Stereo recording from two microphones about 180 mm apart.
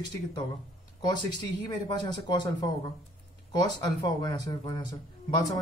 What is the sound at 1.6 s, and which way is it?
Speech, 25° left (ahead or behind).